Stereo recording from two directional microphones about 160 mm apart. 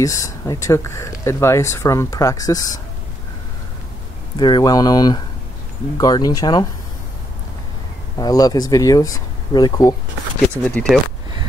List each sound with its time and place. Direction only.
0.0 s speech: 20° left (ahead or behind)
4.4 s speech: 30° left (ahead or behind)
8.2 s speech: 25° left (ahead or behind)
10.6 s speech: 5° left (ahead or behind)